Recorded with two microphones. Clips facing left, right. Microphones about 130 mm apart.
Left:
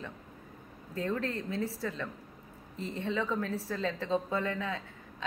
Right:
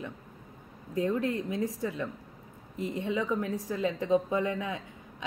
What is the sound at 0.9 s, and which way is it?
A woman's voice, 15° right (ahead or behind).